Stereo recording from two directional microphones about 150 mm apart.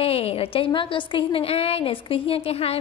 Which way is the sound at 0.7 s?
35° left (ahead or behind).